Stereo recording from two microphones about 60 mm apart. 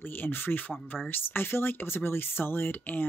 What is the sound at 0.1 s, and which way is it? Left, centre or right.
Speech, left.